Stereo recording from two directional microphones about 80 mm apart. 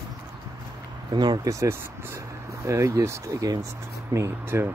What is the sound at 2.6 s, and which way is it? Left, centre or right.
Speech, right.